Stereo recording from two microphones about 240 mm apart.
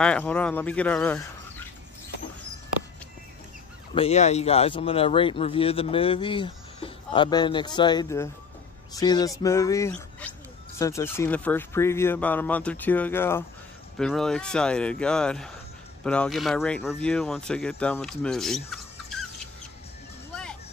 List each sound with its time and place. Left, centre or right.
0.0 s speech: centre
3.9 s speech: left; by 19.1 s centre